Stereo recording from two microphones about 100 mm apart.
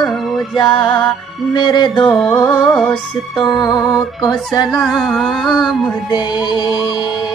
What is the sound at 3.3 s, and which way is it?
Music, 45° left (ahead or behind).